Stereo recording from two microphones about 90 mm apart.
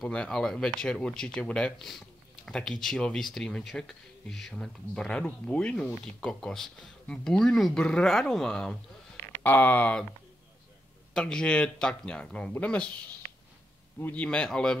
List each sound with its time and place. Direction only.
0.1 s speech: 10° left (ahead or behind)
9.4 s speech: 20° left (ahead or behind)
11.1 s speech: 5° left (ahead or behind)
13.9 s a man's voice: 25° left (ahead or behind)
14.2 s speech: 10° left (ahead or behind)